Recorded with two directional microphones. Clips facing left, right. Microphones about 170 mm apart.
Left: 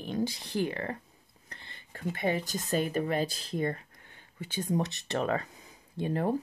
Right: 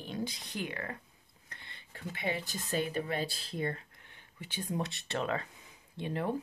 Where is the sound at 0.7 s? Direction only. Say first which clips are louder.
Left 6 dB; 30° left (ahead or behind).